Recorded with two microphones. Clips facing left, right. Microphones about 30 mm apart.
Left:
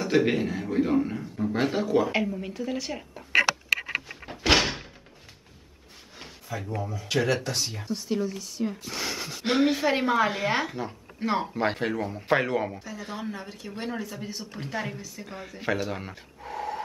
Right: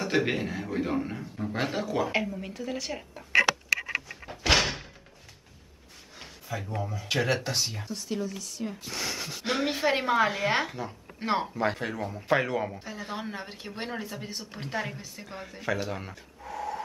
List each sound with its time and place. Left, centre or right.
0.0 s a man's voice: centre
4.3 s door: centre
6.1 s a man's voice: centre
7.8 s a man's voice: centre
9.7 s a man's voice: centre
11.1 s speech: centre
11.5 s speech: left
12.1 s speech: centre
12.7 s speech: right
13.8 s speech: centre
15.9 s a sound: centre